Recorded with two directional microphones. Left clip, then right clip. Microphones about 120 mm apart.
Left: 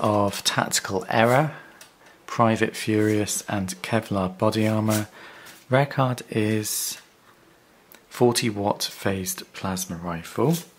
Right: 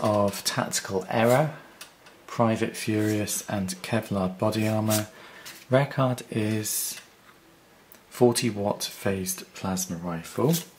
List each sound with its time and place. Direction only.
0.0 s speech: 40° left (ahead or behind)
8.1 s speech: 40° left (ahead or behind)